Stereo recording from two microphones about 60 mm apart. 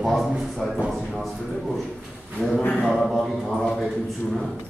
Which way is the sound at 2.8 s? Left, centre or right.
Centre.